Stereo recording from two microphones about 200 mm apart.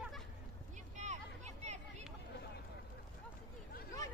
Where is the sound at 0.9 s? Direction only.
35° right (ahead or behind).